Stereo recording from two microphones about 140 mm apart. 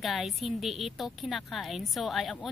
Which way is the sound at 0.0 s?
Centre (ahead or behind).